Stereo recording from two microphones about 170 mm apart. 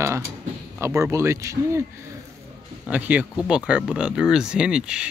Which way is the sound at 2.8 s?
10° right (ahead or behind).